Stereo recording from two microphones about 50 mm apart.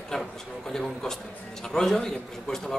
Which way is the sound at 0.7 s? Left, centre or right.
Centre.